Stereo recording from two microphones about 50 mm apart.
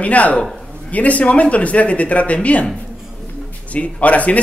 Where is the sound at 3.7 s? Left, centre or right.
Left.